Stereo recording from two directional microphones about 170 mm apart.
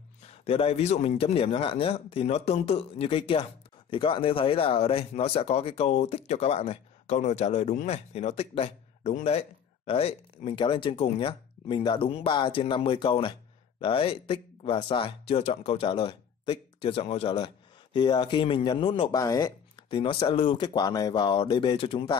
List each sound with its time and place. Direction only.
0.3 s speech: 35° left (ahead or behind)
17.9 s speech: 25° left (ahead or behind)
19.1 s speech: 20° left (ahead or behind)